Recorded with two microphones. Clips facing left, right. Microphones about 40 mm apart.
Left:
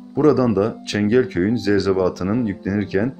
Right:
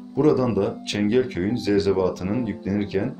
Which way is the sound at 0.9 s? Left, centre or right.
Left.